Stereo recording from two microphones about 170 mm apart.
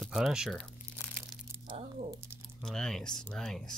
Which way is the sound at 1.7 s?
40° right (ahead or behind).